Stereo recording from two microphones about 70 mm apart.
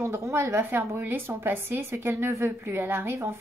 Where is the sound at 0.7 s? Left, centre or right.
Right.